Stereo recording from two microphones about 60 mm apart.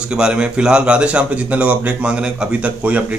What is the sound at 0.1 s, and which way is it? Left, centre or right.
Speech, centre.